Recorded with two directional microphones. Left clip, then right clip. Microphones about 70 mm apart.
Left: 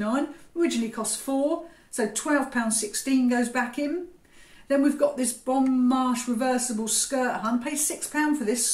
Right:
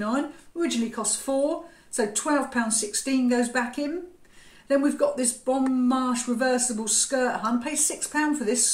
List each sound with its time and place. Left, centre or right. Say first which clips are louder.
0.0 s speech: even; right